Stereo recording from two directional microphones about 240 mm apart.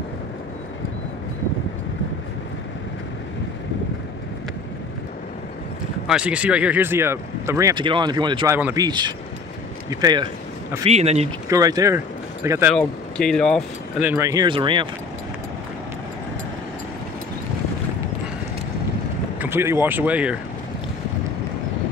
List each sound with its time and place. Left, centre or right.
6.0 s speech: centre; by 11.2 s right
11.4 s speech: centre
12.7 s speech: centre
14.0 s speech: centre
19.4 s speech: centre